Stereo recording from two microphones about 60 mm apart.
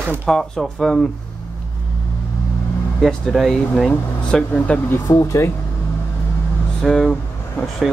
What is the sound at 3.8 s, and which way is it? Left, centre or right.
Speech, centre.